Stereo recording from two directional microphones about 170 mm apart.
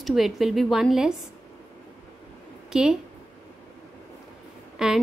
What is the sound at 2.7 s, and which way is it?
Speech, 5° right (ahead or behind).